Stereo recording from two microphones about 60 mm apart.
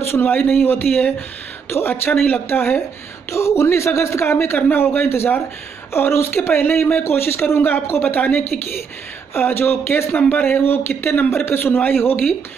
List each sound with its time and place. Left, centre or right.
0.5 s speech: left
3.3 s speech: left
9.3 s speech: left